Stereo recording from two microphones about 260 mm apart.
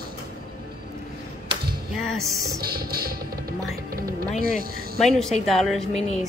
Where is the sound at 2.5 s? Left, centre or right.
Right.